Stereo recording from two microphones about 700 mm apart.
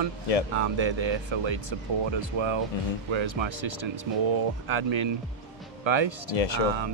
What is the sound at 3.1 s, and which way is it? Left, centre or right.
Speech, right.